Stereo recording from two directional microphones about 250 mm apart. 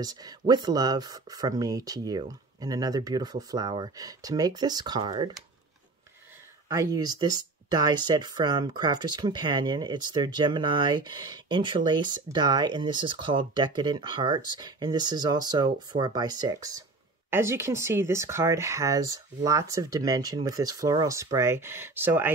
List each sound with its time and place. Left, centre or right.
0.0 s speech: centre
6.7 s speech: centre